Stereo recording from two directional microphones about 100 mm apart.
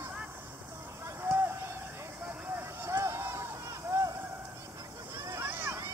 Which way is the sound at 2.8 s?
25° right (ahead or behind).